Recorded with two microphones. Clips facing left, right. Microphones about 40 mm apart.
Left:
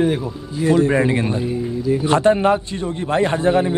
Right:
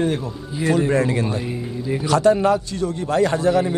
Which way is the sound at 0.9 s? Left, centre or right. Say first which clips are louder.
Left 2 dB; left.